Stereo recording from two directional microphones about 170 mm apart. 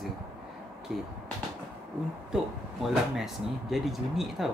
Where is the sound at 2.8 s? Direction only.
Centre (ahead or behind).